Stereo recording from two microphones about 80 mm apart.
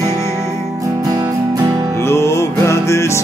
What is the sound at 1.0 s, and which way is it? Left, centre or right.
Music, right.